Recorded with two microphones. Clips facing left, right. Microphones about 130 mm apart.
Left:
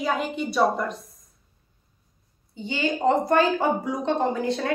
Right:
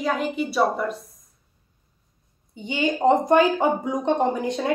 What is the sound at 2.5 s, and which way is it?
Speech, 20° right (ahead or behind).